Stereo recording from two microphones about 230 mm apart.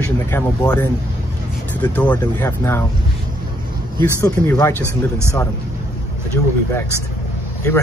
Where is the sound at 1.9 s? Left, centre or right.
Centre.